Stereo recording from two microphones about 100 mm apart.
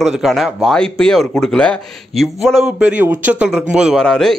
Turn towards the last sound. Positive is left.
turn(degrees=5)  # may be behind; listen again after turning